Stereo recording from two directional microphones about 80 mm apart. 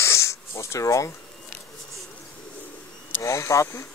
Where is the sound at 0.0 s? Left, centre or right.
Left.